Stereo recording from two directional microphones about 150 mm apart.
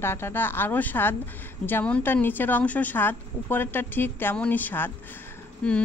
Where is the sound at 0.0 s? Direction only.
15° left (ahead or behind).